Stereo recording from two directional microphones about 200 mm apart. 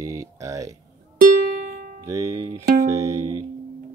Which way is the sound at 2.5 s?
35° right (ahead or behind).